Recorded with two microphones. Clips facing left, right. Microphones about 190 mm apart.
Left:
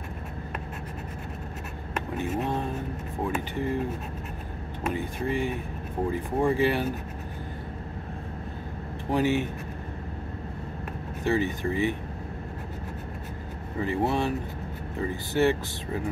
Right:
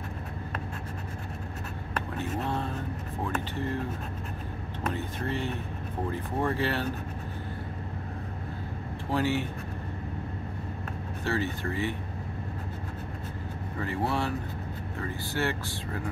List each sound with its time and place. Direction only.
2.0 s vehicle: 15° left (ahead or behind)
3.3 s speech: 10° left (ahead or behind)
4.8 s speech: 10° left (ahead or behind)
9.1 s speech: 15° left (ahead or behind)
11.2 s speech: 15° left (ahead or behind)
13.7 s speech: 20° left (ahead or behind)